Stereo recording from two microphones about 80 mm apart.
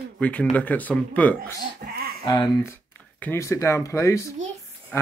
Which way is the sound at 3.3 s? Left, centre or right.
Left.